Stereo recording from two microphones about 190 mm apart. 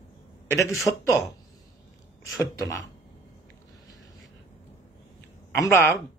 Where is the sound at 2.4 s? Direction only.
15° left (ahead or behind).